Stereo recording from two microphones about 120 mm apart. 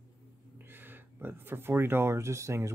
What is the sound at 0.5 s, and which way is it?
Speech, 15° right (ahead or behind).